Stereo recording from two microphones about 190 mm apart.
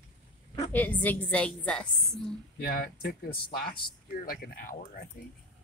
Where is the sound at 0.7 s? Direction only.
10° left (ahead or behind).